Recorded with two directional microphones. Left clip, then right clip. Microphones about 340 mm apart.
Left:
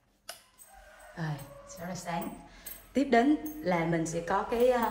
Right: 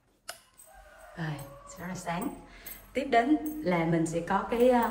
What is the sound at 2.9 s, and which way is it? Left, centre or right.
A woman's voice, centre.